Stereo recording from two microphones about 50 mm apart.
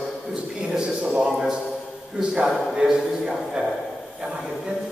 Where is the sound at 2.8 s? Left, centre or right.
Centre.